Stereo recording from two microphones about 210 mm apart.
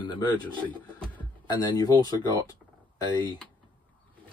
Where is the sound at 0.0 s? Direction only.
20° left (ahead or behind).